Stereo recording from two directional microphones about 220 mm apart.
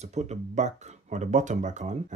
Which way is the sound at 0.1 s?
30° right (ahead or behind).